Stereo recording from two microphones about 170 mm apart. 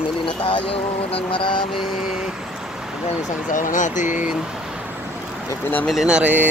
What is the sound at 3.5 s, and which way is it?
Speech, 50° left (ahead or behind).